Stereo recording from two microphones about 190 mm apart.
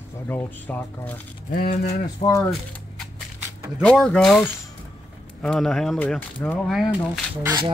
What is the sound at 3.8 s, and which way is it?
Speech, 5° left (ahead or behind).